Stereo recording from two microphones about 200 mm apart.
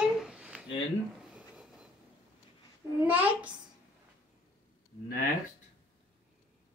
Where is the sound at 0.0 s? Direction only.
5° right (ahead or behind).